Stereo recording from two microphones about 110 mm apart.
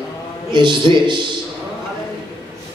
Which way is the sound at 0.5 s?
45° right (ahead or behind).